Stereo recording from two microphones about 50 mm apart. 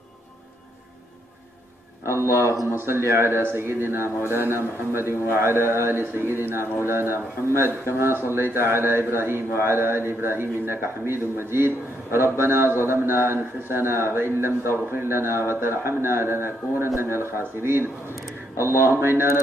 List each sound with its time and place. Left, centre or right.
2.0 s a man's voice: right